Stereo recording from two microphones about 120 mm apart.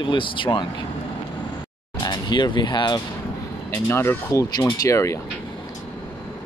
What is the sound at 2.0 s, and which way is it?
Speech, 40° left (ahead or behind).